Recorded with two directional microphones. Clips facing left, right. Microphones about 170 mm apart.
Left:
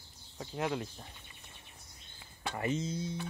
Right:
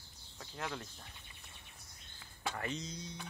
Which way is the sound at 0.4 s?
20° left (ahead or behind).